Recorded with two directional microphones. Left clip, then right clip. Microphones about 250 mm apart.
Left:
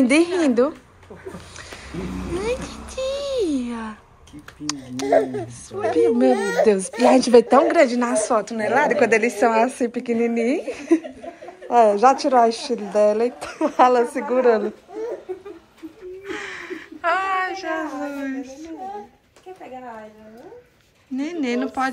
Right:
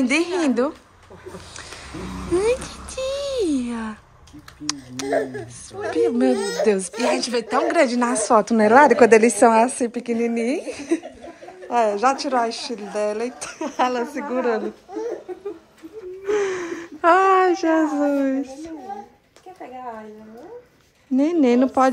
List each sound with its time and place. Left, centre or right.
0.0 s a woman's voice: centre
2.4 s a sound: centre
5.0 s a woman's voice: centre
6.3 s speech: centre
6.6 s a woman's voice: centre
16.3 s a sound: right
18.1 s speech: right
21.2 s speech: right